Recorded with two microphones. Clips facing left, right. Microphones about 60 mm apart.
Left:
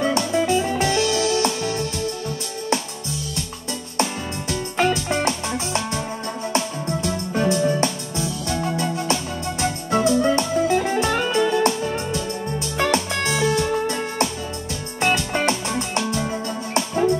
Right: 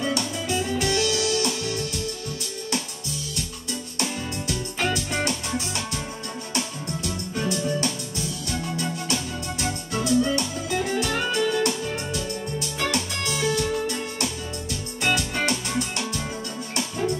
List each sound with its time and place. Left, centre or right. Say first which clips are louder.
0.0 s music: left 7 dB; left
4.0 s music: left 6 dB; left